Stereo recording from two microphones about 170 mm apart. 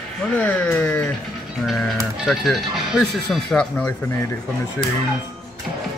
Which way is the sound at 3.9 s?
15° left (ahead or behind).